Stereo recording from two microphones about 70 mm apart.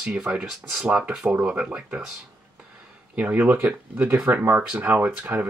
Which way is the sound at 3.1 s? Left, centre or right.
Right.